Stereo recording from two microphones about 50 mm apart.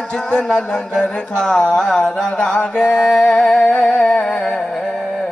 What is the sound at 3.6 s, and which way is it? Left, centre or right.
Carnatic music, centre.